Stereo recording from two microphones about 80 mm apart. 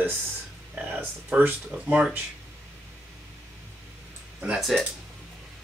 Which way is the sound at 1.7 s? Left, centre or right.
Centre.